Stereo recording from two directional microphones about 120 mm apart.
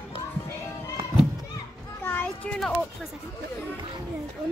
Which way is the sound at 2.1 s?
15° left (ahead or behind).